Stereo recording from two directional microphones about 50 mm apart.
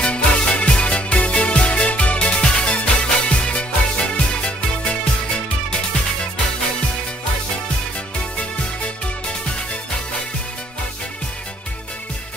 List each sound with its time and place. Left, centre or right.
0.0 s music: left
8.4 s music: left